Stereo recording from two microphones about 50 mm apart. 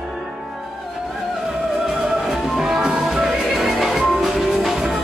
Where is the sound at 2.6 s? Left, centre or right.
Centre.